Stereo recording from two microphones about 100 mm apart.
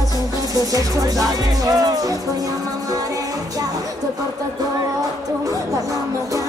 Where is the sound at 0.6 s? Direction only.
40° right (ahead or behind).